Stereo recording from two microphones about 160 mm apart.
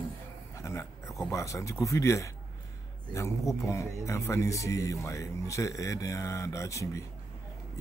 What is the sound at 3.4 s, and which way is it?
Speech, centre (ahead or behind).